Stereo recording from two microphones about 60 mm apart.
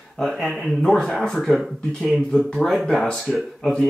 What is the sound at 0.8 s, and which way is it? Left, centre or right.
Speech, centre.